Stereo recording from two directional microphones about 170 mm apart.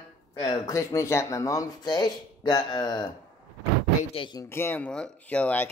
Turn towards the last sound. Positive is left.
turn(degrees=10)  # may be behind; listen again after turning